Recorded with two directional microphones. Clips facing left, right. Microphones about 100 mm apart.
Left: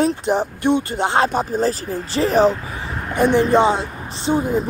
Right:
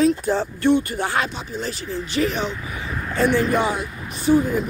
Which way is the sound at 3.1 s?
20° left (ahead or behind).